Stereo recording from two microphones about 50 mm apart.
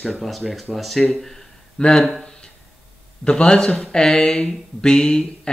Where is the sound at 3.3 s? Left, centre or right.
Centre.